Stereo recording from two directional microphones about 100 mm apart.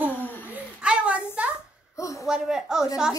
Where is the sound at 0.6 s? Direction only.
10° right (ahead or behind).